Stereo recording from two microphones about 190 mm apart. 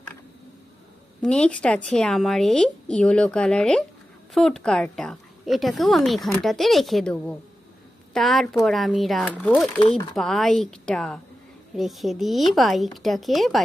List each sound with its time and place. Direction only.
1.2 s a woman's voice: 5° left (ahead or behind)
9.8 s speech: 30° left (ahead or behind)
10.1 s a woman's voice: centre (ahead or behind)